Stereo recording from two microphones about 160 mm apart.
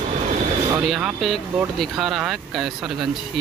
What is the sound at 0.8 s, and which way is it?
Speech, centre (ahead or behind).